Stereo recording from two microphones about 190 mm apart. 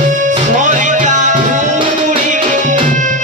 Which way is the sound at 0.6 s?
40° right (ahead or behind).